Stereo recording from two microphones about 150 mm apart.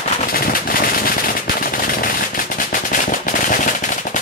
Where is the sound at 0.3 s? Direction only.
75° left (ahead or behind); by 4.2 s 60° left (ahead or behind).